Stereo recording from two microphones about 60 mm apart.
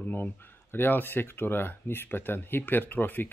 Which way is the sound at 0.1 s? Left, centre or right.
Left.